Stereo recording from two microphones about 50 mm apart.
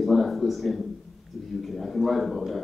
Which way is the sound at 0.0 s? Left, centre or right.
Centre.